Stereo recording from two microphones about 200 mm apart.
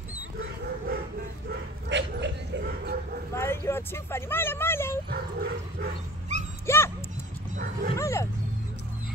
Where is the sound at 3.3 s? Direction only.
10° left (ahead or behind).